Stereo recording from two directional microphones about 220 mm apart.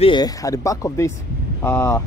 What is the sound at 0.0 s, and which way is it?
A man's voice, 20° left (ahead or behind).